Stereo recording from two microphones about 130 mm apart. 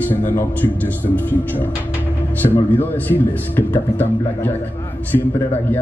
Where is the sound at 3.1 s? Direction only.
15° left (ahead or behind).